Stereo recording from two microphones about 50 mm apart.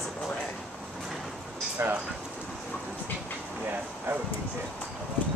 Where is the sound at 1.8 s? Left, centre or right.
Right.